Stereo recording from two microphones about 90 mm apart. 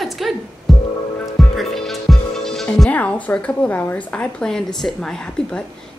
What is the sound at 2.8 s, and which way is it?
A woman's voice, 15° left (ahead or behind).